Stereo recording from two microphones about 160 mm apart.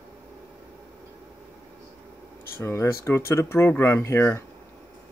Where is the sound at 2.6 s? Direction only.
15° left (ahead or behind).